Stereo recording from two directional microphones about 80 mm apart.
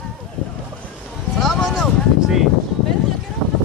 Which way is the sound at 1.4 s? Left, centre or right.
Centre.